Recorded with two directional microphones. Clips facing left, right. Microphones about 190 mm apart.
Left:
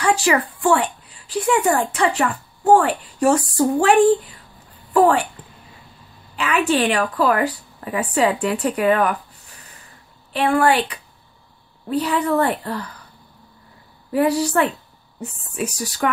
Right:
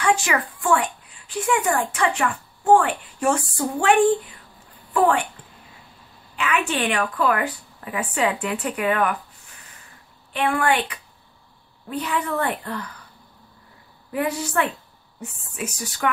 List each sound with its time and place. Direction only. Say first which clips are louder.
0.0 s a woman's voice: left 3 dB; 35° left (ahead or behind)
4.9 s a woman's voice: left 4 dB; 40° left (ahead or behind)
6.3 s a woman's voice: left 5 dB; 35° left (ahead or behind)
10.3 s a woman's voice: left 4 dB; 35° left (ahead or behind)
11.9 s a woman's voice: left 6 dB; 35° left (ahead or behind)
14.1 s a woman's voice: left 6 dB; 35° left (ahead or behind)